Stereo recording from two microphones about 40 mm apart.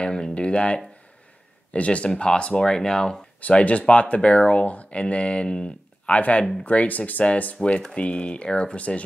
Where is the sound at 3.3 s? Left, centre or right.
Left.